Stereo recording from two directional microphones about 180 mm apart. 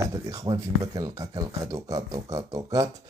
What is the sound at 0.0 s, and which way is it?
Speech, 20° right (ahead or behind).